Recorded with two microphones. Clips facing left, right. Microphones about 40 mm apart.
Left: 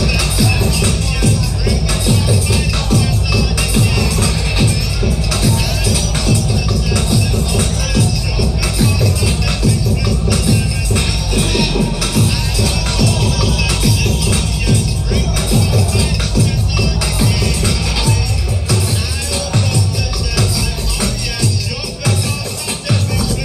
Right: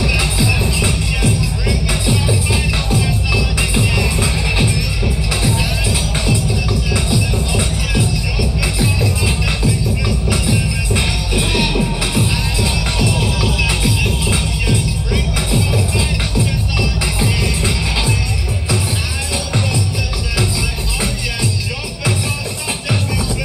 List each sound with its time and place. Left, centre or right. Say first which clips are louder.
0.0 s music: left 1 dB; right